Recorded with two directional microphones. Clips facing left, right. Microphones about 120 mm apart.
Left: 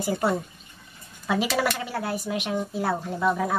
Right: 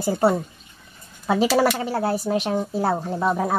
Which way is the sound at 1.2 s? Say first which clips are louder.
Right 6 dB; 30° right (ahead or behind).